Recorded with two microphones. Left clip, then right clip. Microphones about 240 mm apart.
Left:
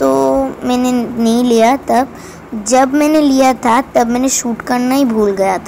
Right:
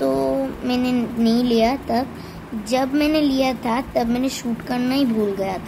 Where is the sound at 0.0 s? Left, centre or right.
Centre.